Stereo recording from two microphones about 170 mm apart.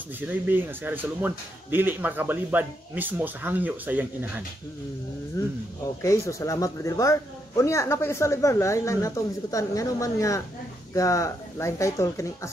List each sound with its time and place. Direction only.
0.2 s a man's voice: 10° right (ahead or behind)
5.4 s speech: 20° left (ahead or behind)